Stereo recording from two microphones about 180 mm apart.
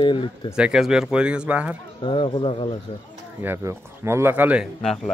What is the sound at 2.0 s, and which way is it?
Speech, 25° left (ahead or behind).